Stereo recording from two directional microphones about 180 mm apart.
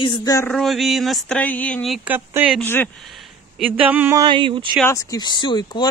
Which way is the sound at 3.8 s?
10° right (ahead or behind).